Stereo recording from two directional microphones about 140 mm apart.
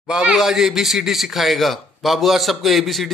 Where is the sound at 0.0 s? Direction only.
5° right (ahead or behind).